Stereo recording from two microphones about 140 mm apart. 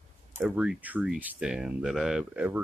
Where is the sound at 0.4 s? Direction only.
10° right (ahead or behind).